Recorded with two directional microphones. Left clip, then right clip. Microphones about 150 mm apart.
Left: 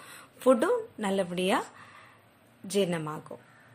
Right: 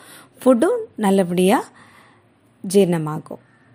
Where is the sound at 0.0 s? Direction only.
35° right (ahead or behind).